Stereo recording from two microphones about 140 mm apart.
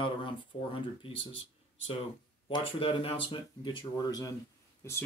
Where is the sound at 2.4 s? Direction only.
40° left (ahead or behind).